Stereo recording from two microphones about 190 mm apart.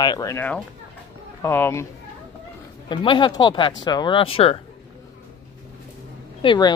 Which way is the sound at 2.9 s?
25° left (ahead or behind).